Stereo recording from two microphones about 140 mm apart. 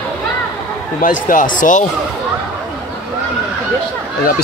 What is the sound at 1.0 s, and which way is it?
Speech, 75° left (ahead or behind).